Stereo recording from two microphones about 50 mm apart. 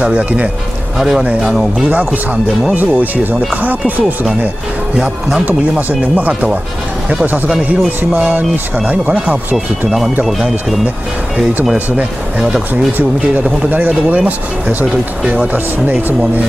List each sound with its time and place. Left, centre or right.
0.0 s speech: right
0.9 s speech: centre
2.7 s speech: right
4.9 s speech: centre
5.4 s speech: right
7.4 s speech: centre
8.7 s speech: right
9.8 s speech: centre
12.9 s speech: right